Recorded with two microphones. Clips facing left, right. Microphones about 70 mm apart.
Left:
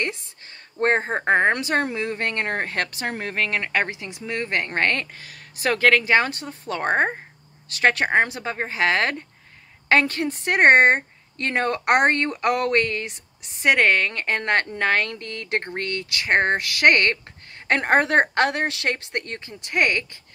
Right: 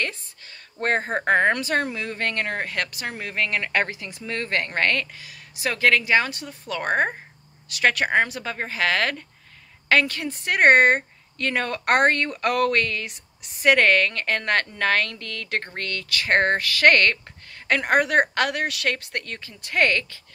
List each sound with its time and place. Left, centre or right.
0.7 s a woman's voice: left
5.1 s a woman's voice: left
19.7 s a woman's voice: centre